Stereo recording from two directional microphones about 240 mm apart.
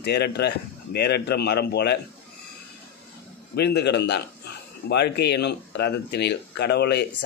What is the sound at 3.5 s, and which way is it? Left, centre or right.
Speech, left.